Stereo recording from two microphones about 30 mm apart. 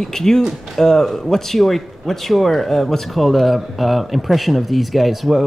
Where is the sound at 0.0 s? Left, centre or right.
Centre.